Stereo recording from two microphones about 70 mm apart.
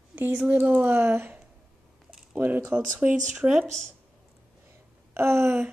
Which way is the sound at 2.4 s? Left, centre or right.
Right.